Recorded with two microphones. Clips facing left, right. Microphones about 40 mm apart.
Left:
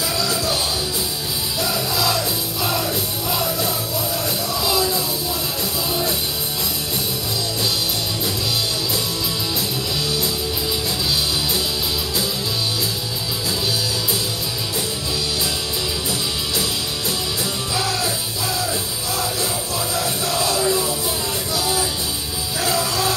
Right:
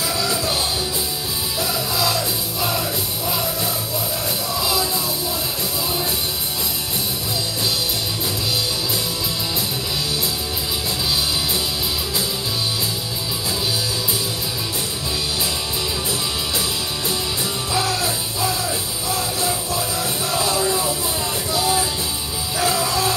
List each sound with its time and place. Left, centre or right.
0.2 s music: right
1.6 s music: centre
17.8 s music: right
20.2 s music: right
20.6 s music: centre
21.5 s music: centre